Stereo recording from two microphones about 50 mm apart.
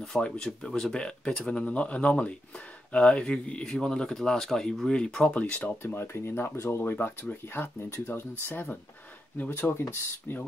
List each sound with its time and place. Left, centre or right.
0.2 s speech: centre
5.3 s speech: left
5.8 s speech: left
6.8 s speech: left